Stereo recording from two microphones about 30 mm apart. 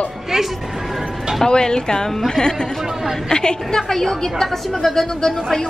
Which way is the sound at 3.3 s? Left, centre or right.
Left.